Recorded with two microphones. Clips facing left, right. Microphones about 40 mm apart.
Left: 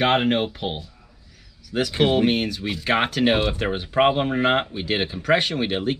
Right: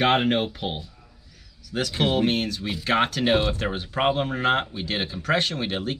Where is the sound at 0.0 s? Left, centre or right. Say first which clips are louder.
Left 1 dB; centre.